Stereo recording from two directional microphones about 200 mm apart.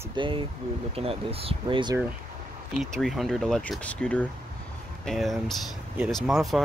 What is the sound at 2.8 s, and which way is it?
Speech, centre (ahead or behind).